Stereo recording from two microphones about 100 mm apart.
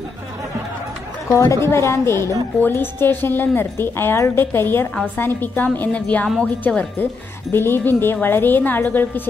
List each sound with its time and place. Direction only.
1.3 s a woman's voice: 30° left (ahead or behind); by 6.5 s 10° left (ahead or behind)
7.5 s a woman's voice: 20° left (ahead or behind)